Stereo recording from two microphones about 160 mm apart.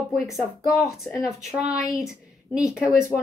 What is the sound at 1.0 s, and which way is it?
A woman's voice, 5° right (ahead or behind).